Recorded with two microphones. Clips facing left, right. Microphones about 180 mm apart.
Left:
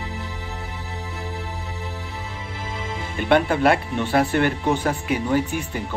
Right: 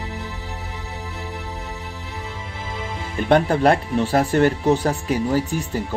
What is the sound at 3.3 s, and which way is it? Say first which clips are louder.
Speech: right 2 dB; 40° right (ahead or behind).